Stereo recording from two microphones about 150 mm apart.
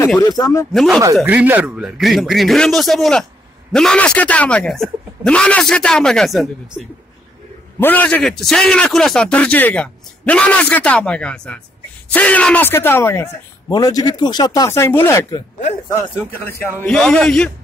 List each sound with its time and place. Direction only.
0.2 s speech: 25° left (ahead or behind)
0.7 s a man's voice: centre (ahead or behind)
1.2 s a man's voice: 10° right (ahead or behind)
7.8 s a man's voice: 10° left (ahead or behind)
16.8 s a man's voice: 5° left (ahead or behind)